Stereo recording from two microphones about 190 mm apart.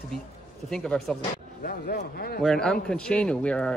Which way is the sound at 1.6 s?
55° left (ahead or behind).